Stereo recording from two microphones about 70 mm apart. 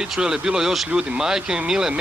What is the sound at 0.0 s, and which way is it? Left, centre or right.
Speech, centre.